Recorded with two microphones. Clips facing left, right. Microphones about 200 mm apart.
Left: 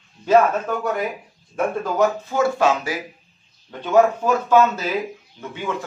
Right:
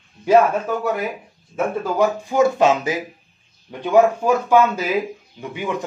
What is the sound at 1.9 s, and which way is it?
Speech, 15° right (ahead or behind).